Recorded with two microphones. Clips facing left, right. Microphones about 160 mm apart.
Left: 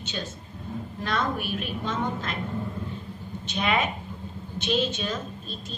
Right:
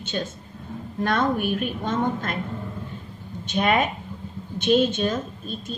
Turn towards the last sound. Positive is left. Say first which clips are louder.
# right 6 dB
turn(degrees=-50)  # may be behind; listen again after turning